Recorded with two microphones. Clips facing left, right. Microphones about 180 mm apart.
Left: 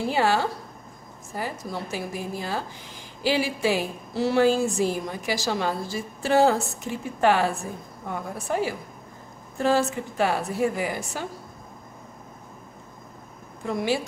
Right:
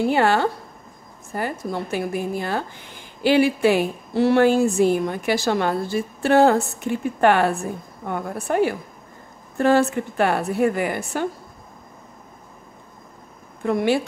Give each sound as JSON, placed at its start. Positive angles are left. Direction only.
{"t": 0.0, "sound": "speech", "side_deg": -60}
{"t": 13.7, "sound": "speech", "side_deg": -60}